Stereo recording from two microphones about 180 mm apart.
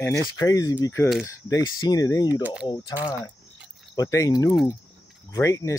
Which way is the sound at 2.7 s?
25° left (ahead or behind).